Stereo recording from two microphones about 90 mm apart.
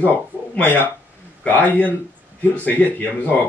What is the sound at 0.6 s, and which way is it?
Speech, 20° left (ahead or behind).